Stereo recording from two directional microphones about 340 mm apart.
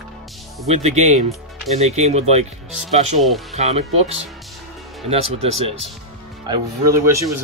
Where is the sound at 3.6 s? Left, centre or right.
Centre.